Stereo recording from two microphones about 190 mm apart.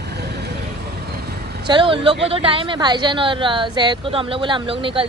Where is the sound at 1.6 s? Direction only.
25° right (ahead or behind).